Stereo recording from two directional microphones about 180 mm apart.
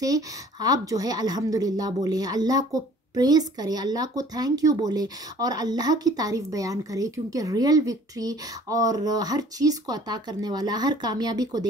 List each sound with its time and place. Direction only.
0.0 s a woman's voice: 20° right (ahead or behind)